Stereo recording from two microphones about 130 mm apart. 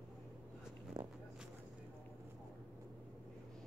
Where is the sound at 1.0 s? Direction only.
40° right (ahead or behind).